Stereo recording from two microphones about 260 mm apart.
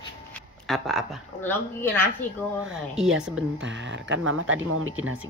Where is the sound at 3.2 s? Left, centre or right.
Centre.